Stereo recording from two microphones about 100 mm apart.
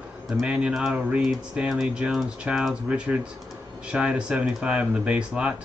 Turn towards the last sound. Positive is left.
turn(degrees=-10)  # may be behind; listen again after turning